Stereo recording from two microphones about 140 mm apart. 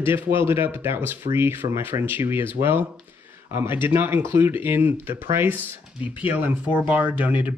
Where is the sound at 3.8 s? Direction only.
15° right (ahead or behind).